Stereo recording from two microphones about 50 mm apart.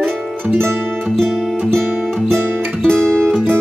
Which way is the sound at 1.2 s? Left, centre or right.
Centre.